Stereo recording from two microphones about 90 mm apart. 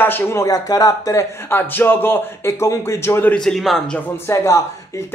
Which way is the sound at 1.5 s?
25° left (ahead or behind).